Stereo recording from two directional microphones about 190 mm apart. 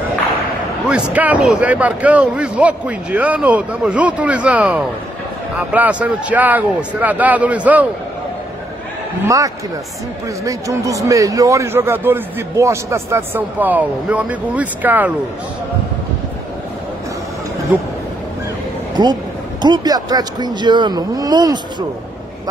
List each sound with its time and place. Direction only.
0.8 s a man's voice: 5° right (ahead or behind)
9.2 s a man's voice: 15° right (ahead or behind)
19.0 s speech: 20° right (ahead or behind)